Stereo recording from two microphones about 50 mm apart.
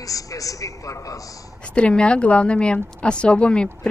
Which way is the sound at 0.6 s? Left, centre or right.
Left.